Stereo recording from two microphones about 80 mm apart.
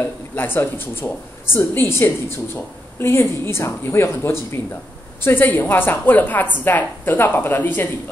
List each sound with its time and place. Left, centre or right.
0.0 s a woman's voice: left